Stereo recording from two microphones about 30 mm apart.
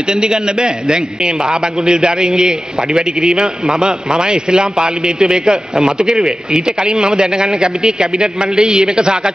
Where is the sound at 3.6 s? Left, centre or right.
Right.